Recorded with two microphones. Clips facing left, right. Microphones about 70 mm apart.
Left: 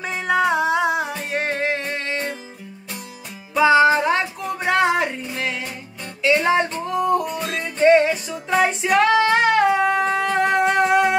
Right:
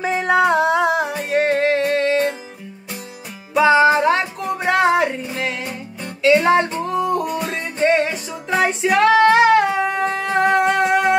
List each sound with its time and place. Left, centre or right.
0.0 s music: centre
3.5 s music: centre